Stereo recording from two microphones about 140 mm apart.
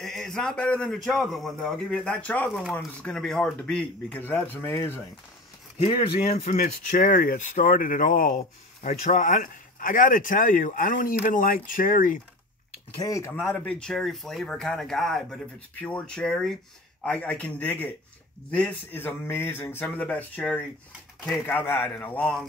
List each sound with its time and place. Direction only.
0.0 s speech: 5° left (ahead or behind)
6.2 s speech: 50° left (ahead or behind); by 8.5 s 85° left
8.8 s speech: 55° left (ahead or behind); by 12.2 s 75° left (ahead or behind)
13.0 s speech: 25° left (ahead or behind)
13.3 s speech: 10° left (ahead or behind)